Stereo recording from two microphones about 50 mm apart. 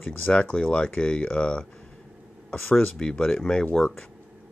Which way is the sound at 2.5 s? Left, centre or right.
Left.